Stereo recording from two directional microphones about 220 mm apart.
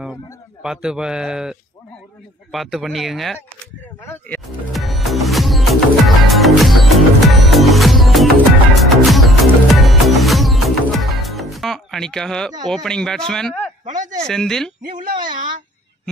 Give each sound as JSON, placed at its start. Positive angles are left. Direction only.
{"t": 0.0, "sound": "a man's voice", "side_deg": -5}
{"t": 4.0, "sound": "a sound", "side_deg": 10}
{"t": 4.7, "sound": "music", "side_deg": 0}
{"t": 13.3, "sound": "speech", "side_deg": 0}
{"t": 13.8, "sound": "a sound", "side_deg": -35}
{"t": 14.2, "sound": "speech", "side_deg": 0}